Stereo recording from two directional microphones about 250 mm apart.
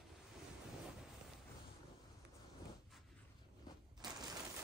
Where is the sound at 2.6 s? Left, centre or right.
Centre.